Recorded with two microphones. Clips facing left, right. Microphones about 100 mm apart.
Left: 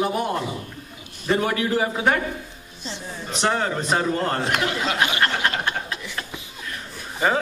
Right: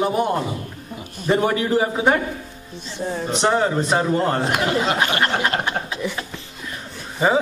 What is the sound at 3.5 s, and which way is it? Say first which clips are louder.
Speech: right 3 dB; 15° right (ahead or behind).